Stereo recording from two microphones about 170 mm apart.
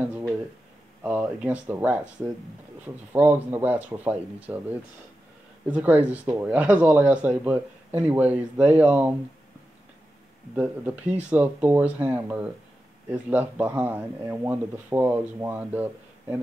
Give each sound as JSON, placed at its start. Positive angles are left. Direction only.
{"t": 1.0, "sound": "speech", "side_deg": -10}
{"t": 10.5, "sound": "speech", "side_deg": -10}